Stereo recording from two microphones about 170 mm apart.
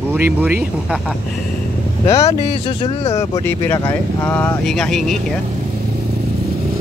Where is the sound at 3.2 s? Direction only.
15° left (ahead or behind).